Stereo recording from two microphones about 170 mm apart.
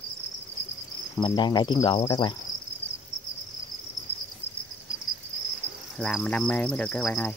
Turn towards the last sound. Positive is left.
turn(degrees=5)  # may be behind; listen again after turning